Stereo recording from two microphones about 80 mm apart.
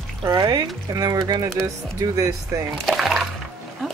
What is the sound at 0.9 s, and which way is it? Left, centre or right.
Speech, right.